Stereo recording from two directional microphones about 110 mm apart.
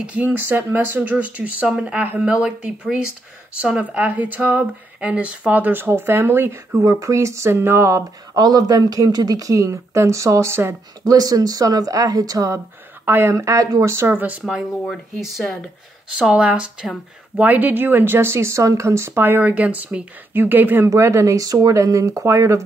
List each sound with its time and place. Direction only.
0.0 s speech: 10° right (ahead or behind)
8.4 s speech: 35° right (ahead or behind)
11.1 s speech: 35° right (ahead or behind); by 14.3 s 20° right (ahead or behind)
14.4 s speech: centre (ahead or behind)
16.2 s speech: 10° right (ahead or behind); by 22.6 s 25° right (ahead or behind)